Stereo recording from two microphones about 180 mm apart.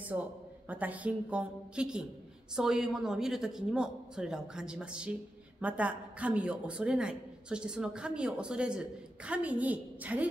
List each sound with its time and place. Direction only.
0.0 s a man's voice: 10° right (ahead or behind)